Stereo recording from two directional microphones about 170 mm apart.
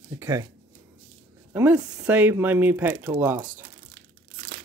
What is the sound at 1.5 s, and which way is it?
Speech, 10° right (ahead or behind).